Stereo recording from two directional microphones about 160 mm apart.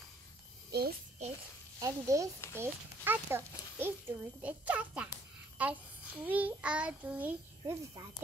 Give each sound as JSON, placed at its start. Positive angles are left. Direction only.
{"t": 0.7, "sound": "a child's voice", "side_deg": -85}
{"t": 1.8, "sound": "a child's voice", "side_deg": -20}